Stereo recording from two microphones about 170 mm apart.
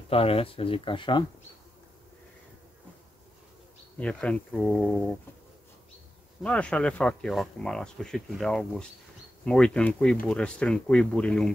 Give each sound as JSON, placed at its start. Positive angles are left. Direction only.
{"t": 0.1, "sound": "speech", "side_deg": 35}
{"t": 4.0, "sound": "speech", "side_deg": 5}
{"t": 6.4, "sound": "speech", "side_deg": 5}